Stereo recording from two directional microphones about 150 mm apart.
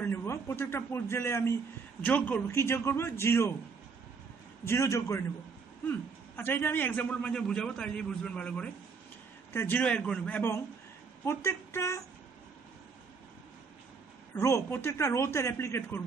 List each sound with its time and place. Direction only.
0.0 s a man's voice: 15° left (ahead or behind)
4.6 s a man's voice: 20° left (ahead or behind)
14.3 s a man's voice: 15° left (ahead or behind)